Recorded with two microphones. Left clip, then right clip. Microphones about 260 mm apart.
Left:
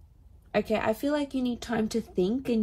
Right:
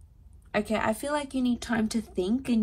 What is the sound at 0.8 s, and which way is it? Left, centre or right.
Speech, right.